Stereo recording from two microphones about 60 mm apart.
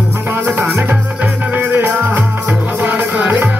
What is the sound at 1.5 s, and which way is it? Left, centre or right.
Music, right.